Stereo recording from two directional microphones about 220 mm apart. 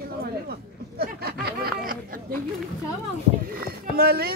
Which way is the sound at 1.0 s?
45° right (ahead or behind).